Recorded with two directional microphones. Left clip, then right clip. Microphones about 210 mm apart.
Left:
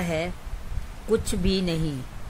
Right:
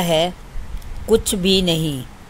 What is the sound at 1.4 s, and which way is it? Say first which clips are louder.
Speech: right 10 dB; 15° left (ahead or behind).